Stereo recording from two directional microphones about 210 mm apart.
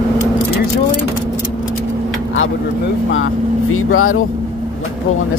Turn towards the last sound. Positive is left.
turn(degrees=80)